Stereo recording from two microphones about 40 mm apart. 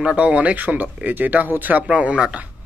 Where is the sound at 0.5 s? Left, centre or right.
Right.